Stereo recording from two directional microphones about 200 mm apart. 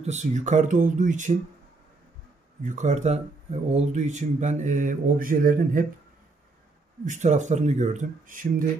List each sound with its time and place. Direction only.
0.0 s speech: 35° right (ahead or behind)
2.6 s speech: 40° right (ahead or behind)
7.1 s speech: 35° right (ahead or behind)